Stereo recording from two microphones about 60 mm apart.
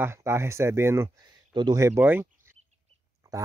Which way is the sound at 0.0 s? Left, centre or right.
Right.